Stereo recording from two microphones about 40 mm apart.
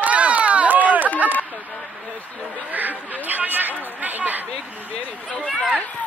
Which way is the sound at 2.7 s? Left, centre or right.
Right.